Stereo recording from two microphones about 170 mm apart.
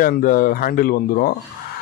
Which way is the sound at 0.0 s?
55° left (ahead or behind).